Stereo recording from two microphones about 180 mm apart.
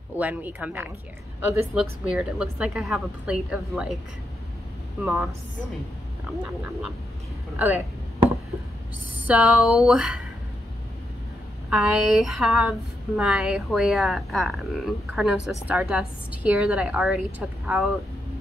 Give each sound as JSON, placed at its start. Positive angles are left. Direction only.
{"t": 0.2, "sound": "speech", "side_deg": -10}
{"t": 5.0, "sound": "speech", "side_deg": -5}
{"t": 7.5, "sound": "speech", "side_deg": -10}
{"t": 9.2, "sound": "speech", "side_deg": -5}
{"t": 11.7, "sound": "speech", "side_deg": -5}